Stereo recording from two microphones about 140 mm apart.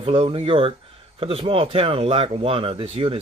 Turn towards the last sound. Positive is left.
turn(degrees=-40)  # may be behind; listen again after turning